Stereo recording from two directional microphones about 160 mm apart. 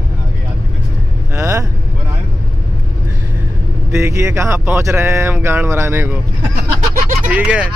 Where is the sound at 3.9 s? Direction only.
20° right (ahead or behind).